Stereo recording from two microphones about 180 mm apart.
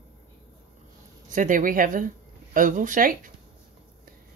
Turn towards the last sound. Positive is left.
turn(degrees=-50)  # may be behind; listen again after turning